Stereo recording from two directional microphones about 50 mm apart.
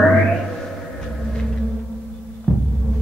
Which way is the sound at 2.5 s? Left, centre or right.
Centre.